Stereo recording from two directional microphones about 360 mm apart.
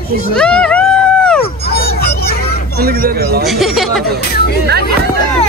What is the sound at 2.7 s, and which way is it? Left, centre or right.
Speech, right.